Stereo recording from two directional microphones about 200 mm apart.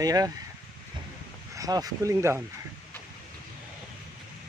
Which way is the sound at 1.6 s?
20° right (ahead or behind).